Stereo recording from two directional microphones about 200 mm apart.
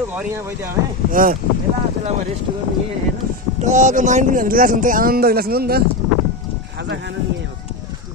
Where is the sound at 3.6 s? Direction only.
40° right (ahead or behind).